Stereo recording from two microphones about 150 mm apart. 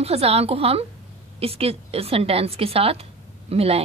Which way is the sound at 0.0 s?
40° right (ahead or behind).